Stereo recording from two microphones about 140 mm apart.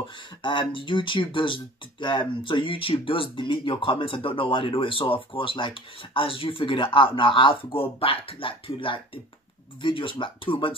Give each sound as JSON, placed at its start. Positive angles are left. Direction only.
{"t": 0.0, "sound": "speech", "side_deg": 35}